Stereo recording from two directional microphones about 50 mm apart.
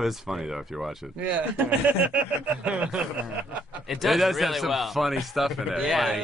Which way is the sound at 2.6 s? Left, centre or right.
Right.